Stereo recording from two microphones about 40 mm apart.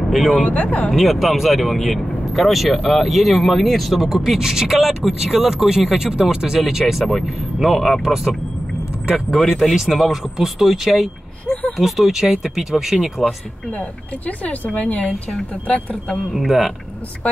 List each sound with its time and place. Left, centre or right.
0.1 s speech: centre
0.5 s speech: left
0.9 s speech: centre
4.0 s speech: centre
8.0 s speech: centre
9.1 s speech: centre
11.4 s speech: left
11.7 s speech: centre
13.7 s speech: left
16.3 s speech: centre